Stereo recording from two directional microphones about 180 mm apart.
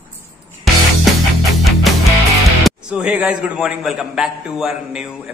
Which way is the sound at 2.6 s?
5° right (ahead or behind).